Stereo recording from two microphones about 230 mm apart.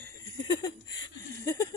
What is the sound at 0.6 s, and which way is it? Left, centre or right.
Speech, centre.